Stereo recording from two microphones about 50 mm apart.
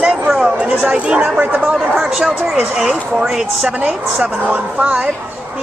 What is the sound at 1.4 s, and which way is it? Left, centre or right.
Speech, right.